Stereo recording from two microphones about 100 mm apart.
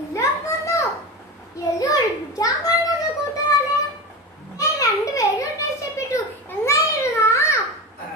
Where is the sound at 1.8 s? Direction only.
35° left (ahead or behind).